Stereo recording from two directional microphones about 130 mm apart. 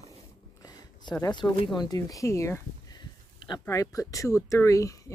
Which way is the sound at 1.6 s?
35° left (ahead or behind).